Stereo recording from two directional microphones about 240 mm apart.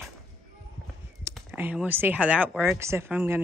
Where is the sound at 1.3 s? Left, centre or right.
Centre.